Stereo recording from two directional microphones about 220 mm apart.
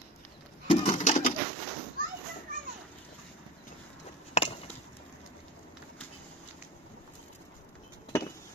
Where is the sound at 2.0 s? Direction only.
40° right (ahead or behind).